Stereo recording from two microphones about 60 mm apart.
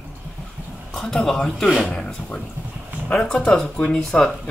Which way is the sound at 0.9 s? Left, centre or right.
Centre.